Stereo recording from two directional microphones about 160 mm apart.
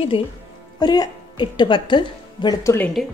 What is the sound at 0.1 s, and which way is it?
Speech, 35° left (ahead or behind).